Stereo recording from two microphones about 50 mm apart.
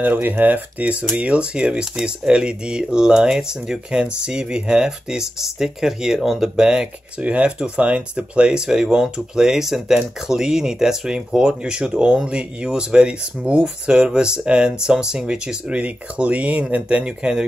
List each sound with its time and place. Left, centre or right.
0.0 s speech: right; by 6.9 s centre
7.2 s speech: right